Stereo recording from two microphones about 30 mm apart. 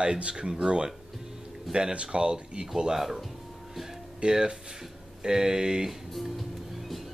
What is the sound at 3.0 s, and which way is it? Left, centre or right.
Speech, centre.